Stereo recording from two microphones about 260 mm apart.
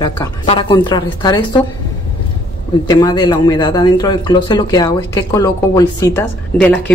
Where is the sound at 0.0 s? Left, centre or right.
Centre.